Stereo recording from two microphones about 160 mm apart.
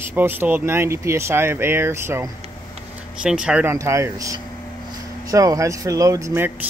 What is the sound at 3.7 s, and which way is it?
Speech, 20° right (ahead or behind).